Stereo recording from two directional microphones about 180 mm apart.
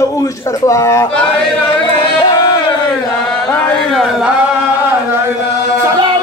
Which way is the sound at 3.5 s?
5° left (ahead or behind).